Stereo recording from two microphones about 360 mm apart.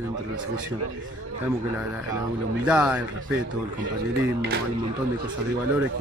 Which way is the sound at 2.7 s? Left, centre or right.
Centre.